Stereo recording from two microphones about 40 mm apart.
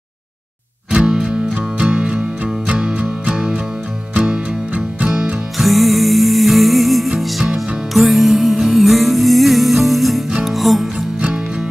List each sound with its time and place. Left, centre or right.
0.9 s music: centre
3.3 s music: centre
4.7 s music: right
5.6 s music: centre